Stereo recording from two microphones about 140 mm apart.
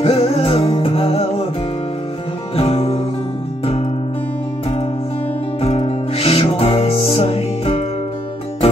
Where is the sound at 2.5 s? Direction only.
45° left (ahead or behind).